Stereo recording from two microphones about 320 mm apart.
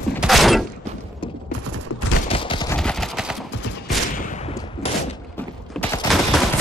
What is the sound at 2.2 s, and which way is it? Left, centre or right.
Fusillade, centre.